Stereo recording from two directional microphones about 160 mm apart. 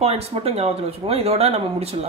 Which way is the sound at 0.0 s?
40° right (ahead or behind).